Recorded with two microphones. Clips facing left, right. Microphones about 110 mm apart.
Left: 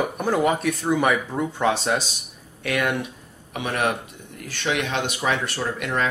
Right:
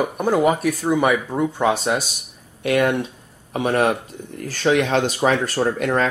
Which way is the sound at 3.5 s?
35° right (ahead or behind).